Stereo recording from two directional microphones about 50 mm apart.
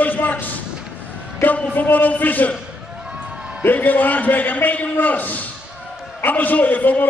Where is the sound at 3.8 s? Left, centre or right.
Left.